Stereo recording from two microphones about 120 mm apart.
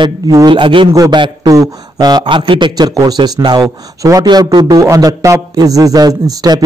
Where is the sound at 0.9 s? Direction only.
30° right (ahead or behind).